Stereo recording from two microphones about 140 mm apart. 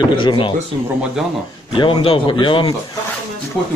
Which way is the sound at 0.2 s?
35° left (ahead or behind).